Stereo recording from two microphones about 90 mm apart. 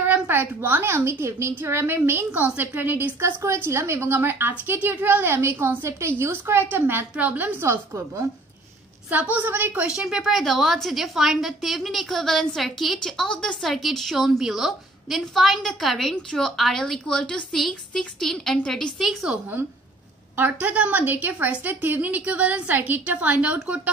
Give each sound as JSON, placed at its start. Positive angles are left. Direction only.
{"t": 0.0, "sound": "a woman's voice", "side_deg": -20}
{"t": 9.1, "sound": "a woman's voice", "side_deg": -20}
{"t": 20.3, "sound": "a woman's voice", "side_deg": -20}